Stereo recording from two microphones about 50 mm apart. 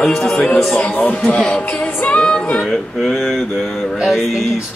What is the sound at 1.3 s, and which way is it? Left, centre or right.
Speech, centre.